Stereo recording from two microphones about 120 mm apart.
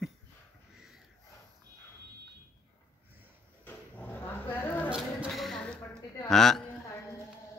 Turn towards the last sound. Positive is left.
turn(degrees=5)  # may be behind; listen again after turning